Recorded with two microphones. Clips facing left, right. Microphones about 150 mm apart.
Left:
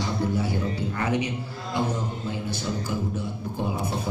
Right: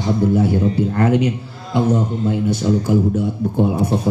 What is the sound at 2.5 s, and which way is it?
A man's voice, 60° right (ahead or behind).